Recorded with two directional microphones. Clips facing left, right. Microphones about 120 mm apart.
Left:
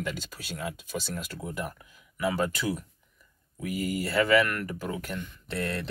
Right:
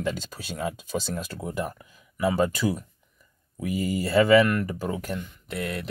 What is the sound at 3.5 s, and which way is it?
Speech, 25° right (ahead or behind).